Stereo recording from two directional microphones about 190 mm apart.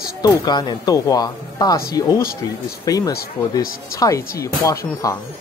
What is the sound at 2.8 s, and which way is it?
Speech, 20° left (ahead or behind).